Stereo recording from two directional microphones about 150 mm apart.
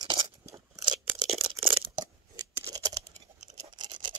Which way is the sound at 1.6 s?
35° right (ahead or behind).